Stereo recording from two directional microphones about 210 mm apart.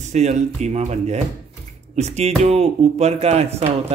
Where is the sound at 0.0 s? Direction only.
35° right (ahead or behind).